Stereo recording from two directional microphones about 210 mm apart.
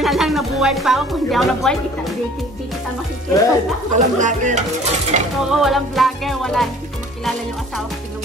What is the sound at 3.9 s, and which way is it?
Speech, 35° right (ahead or behind).